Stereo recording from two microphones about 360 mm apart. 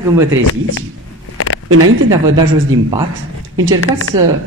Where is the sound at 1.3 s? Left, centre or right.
Left.